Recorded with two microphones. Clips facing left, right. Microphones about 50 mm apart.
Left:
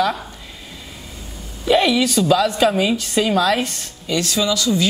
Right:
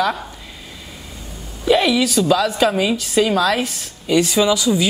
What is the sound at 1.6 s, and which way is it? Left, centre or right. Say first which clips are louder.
A woman's voice: even; centre.